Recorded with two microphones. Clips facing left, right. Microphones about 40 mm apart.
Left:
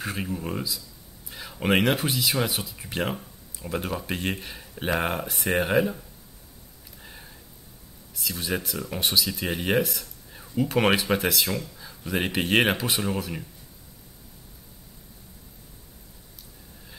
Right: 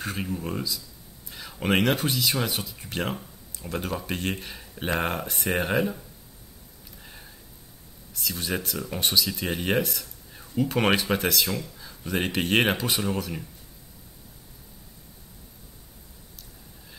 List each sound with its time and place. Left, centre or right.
0.0 s speech: centre
7.0 s a sound: centre
8.1 s speech: centre